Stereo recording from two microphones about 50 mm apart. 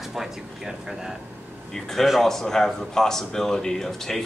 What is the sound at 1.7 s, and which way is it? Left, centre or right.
Speech, centre.